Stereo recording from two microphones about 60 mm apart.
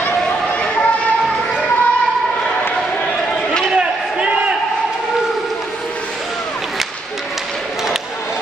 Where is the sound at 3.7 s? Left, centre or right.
Centre.